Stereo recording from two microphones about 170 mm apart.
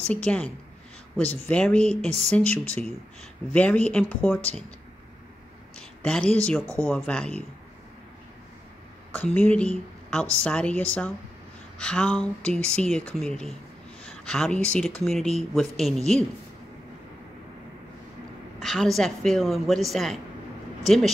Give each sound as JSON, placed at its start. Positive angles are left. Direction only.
{"t": 0.1, "sound": "speech", "side_deg": 5}
{"t": 3.5, "sound": "speech", "side_deg": 10}
{"t": 5.8, "sound": "speech", "side_deg": 5}
{"t": 6.6, "sound": "speech", "side_deg": -20}
{"t": 6.9, "sound": "speech", "side_deg": 5}
{"t": 9.1, "sound": "a woman's voice", "side_deg": 10}
{"t": 18.6, "sound": "speech", "side_deg": 0}